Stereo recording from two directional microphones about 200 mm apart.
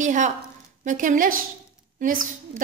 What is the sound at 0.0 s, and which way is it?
A woman's voice, 40° right (ahead or behind).